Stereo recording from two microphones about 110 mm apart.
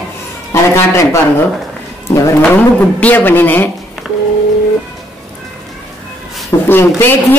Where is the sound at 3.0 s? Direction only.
15° left (ahead or behind).